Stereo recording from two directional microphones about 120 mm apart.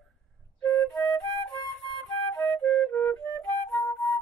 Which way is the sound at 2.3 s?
10° left (ahead or behind).